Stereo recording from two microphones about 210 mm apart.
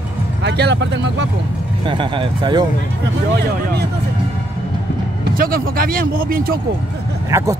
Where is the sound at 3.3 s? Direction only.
50° right (ahead or behind).